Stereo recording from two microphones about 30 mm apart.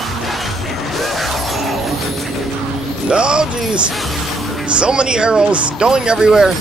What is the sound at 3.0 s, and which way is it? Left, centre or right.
Speech, right.